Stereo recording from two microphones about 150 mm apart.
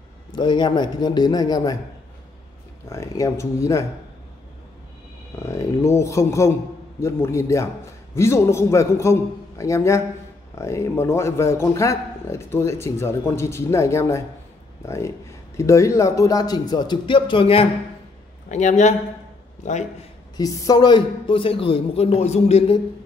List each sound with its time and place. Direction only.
0.3 s speech: 30° left (ahead or behind)
2.9 s speech: 20° left (ahead or behind)
5.4 s a man's voice: 20° left (ahead or behind); by 17.6 s 35° left (ahead or behind)
18.5 s speech: 55° left (ahead or behind)
20.3 s a man's voice: 25° left (ahead or behind); by 22.8 s 45° left (ahead or behind)